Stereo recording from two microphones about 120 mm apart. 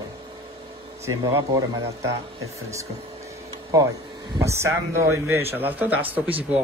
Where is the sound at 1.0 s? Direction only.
25° right (ahead or behind).